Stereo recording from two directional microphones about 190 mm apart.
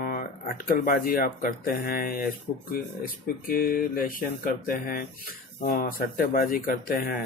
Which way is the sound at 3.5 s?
50° left (ahead or behind).